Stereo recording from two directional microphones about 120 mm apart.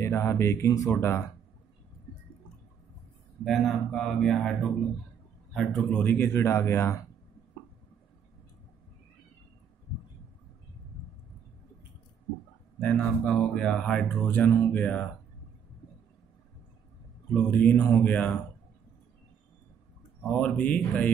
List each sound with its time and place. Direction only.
0.0 s speech: 20° left (ahead or behind)
3.4 s a man's voice: centre (ahead or behind)
5.9 s speech: 15° left (ahead or behind)
12.8 s speech: 10° left (ahead or behind)
17.3 s speech: 10° left (ahead or behind)
20.2 s speech: 10° left (ahead or behind)